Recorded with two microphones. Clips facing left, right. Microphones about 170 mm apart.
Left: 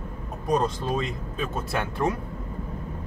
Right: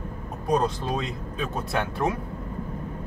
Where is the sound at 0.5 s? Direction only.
Centre (ahead or behind).